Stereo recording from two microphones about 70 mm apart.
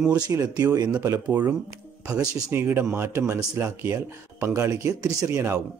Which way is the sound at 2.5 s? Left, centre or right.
Right.